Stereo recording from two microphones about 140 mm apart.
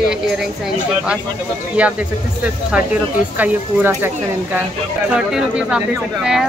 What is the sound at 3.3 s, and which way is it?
Speech, 10° right (ahead or behind).